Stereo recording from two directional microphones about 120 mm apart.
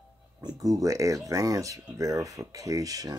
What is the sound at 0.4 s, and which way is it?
Speech, 30° right (ahead or behind).